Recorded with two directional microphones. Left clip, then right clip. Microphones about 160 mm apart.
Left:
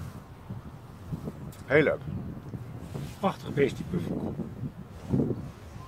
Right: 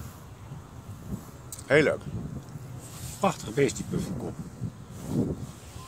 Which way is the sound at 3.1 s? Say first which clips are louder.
Right 2 dB; 70° right (ahead or behind).